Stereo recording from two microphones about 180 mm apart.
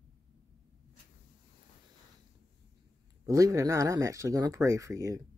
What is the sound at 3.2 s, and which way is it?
Speech, 20° right (ahead or behind).